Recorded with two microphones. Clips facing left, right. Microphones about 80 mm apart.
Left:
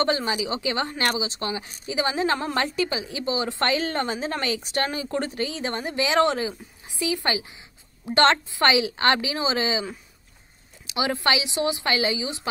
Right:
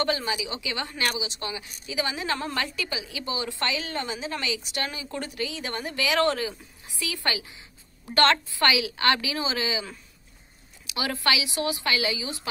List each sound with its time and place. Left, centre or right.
0.0 s a woman's voice: left
10.9 s a woman's voice: left